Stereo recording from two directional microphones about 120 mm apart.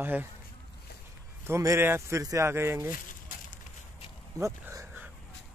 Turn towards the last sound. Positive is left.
turn(degrees=-25)  # may be behind; listen again after turning